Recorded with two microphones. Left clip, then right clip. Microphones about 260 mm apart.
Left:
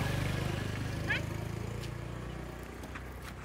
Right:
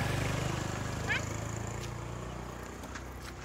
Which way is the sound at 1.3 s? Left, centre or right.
Centre.